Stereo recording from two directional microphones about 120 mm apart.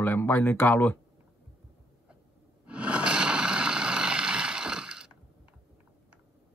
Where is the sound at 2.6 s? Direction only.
10° right (ahead or behind).